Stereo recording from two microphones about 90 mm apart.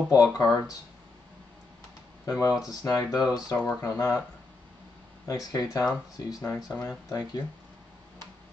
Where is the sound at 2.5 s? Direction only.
5° right (ahead or behind).